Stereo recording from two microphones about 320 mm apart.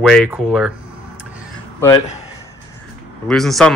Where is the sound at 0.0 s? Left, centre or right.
Centre.